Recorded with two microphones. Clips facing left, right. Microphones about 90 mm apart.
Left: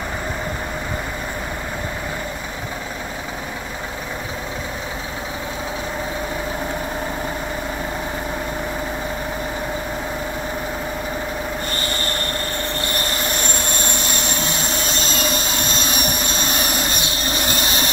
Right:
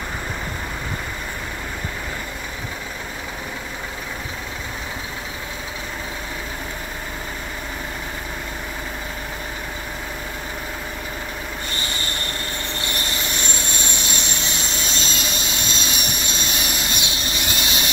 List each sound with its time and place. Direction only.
12.9 s vehicle: 45° left (ahead or behind)